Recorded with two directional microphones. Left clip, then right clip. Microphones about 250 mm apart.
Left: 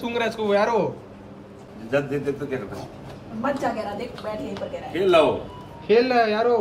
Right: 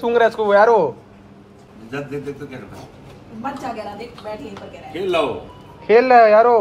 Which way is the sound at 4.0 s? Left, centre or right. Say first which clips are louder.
Even; centre.